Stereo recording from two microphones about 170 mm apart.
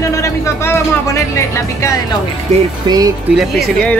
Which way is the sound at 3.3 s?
Centre (ahead or behind).